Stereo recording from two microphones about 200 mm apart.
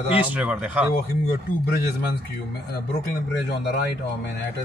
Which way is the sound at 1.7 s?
55° left (ahead or behind).